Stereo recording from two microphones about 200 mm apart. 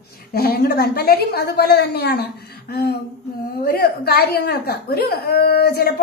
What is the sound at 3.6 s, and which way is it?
Speech, 50° left (ahead or behind).